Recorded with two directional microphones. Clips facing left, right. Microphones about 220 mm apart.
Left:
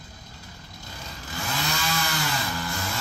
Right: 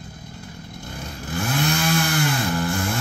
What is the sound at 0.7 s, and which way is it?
Chainsaw, 55° right (ahead or behind).